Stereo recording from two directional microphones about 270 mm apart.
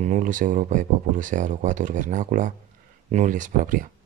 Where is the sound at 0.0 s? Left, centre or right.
Right.